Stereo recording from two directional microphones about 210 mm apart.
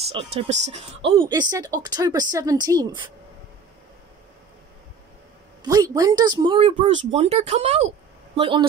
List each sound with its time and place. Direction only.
0.1 s speech: 30° right (ahead or behind)
1.1 s speech: 20° right (ahead or behind)
5.6 s speech: 15° right (ahead or behind)